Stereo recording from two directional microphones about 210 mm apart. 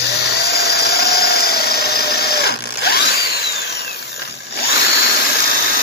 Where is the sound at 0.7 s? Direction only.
50° left (ahead or behind).